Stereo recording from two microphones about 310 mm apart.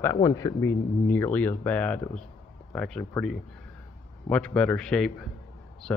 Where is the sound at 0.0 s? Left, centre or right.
Centre.